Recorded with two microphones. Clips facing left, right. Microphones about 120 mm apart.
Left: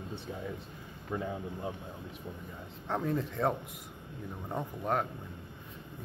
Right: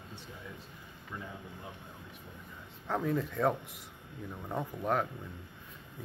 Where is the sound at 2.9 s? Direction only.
5° left (ahead or behind).